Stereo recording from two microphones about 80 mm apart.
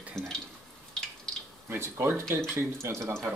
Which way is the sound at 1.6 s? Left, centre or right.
Right.